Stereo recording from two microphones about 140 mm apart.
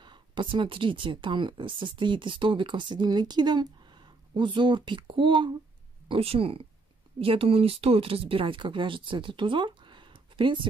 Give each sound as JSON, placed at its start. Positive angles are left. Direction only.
{"t": 0.0, "sound": "speech", "side_deg": -35}